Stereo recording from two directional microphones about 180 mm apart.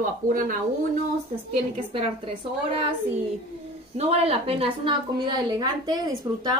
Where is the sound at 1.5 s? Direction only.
30° right (ahead or behind).